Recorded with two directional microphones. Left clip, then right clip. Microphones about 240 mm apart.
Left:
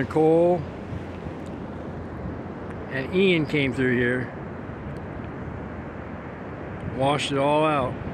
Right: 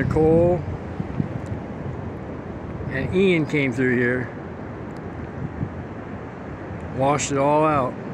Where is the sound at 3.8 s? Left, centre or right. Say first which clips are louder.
Right 3 dB; centre.